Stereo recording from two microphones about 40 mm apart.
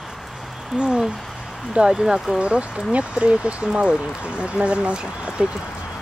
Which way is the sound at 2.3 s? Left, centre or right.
Right.